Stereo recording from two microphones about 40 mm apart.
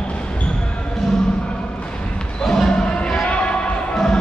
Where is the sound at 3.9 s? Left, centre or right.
Centre.